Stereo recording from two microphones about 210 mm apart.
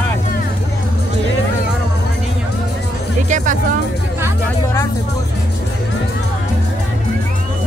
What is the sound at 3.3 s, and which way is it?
Music, 35° right (ahead or behind).